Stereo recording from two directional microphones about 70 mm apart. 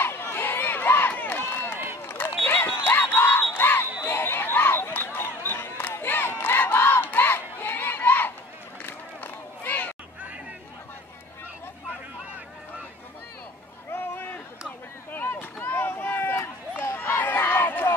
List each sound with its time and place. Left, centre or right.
0.0 s run: left
2.0 s crowd: left
4.0 s chatter: left
5.5 s crowd: left
8.8 s run: left
13.9 s a sound: left
15.5 s run: left